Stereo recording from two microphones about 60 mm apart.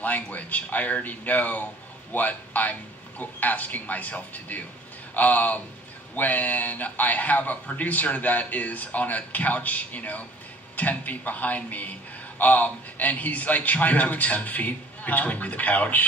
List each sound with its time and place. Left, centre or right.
0.0 s a man's voice: left